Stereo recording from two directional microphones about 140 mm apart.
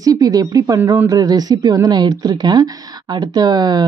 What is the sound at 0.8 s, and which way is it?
Speech, 15° right (ahead or behind).